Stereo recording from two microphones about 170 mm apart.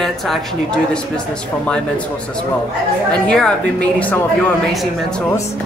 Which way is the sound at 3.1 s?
5° left (ahead or behind).